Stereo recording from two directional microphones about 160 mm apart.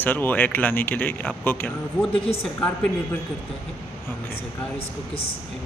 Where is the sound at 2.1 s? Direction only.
35° left (ahead or behind).